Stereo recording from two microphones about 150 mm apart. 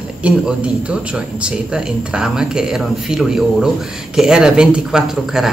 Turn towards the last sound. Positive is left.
turn(degrees=-5)  # may be behind; listen again after turning